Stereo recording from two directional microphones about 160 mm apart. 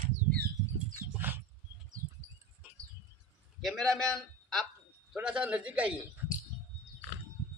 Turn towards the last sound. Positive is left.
turn(degrees=-10)  # may be behind; listen again after turning